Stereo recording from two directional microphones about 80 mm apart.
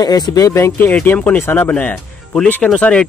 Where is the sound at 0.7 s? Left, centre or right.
Left.